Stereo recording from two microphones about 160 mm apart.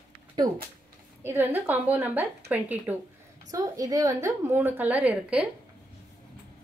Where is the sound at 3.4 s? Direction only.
20° right (ahead or behind).